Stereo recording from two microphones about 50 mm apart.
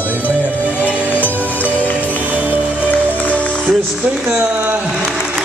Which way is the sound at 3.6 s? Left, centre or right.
Right.